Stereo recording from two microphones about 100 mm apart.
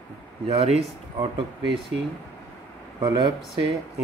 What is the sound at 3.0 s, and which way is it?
Speech, 50° right (ahead or behind).